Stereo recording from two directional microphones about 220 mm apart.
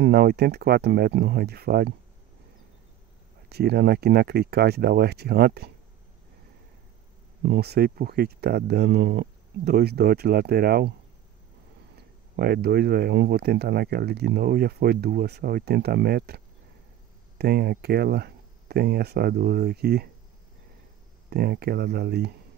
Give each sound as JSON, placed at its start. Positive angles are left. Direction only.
{"t": 0.0, "sound": "speech", "side_deg": -50}
{"t": 3.4, "sound": "speech", "side_deg": -45}
{"t": 7.4, "sound": "speech", "side_deg": -50}
{"t": 12.4, "sound": "speech", "side_deg": -45}
{"t": 21.3, "sound": "speech", "side_deg": -45}